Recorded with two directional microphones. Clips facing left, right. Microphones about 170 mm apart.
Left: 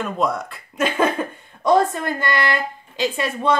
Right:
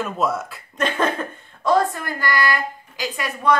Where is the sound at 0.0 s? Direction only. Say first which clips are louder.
Left 1 dB; 5° right (ahead or behind).